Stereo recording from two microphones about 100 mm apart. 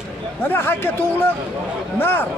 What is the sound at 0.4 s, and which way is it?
Speech, 20° left (ahead or behind).